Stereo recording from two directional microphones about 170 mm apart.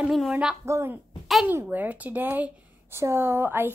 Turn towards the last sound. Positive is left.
turn(degrees=-15)  # may be behind; listen again after turning